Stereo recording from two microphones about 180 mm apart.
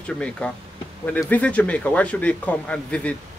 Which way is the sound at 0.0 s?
5° left (ahead or behind).